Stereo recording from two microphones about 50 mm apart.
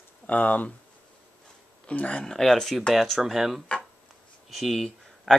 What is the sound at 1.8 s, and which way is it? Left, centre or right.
Speech, left.